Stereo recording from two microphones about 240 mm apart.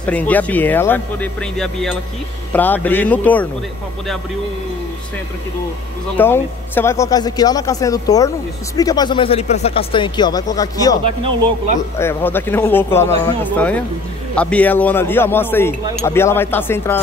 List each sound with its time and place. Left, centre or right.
0.0 s speech: centre
6.1 s speech: centre
12.0 s speech: centre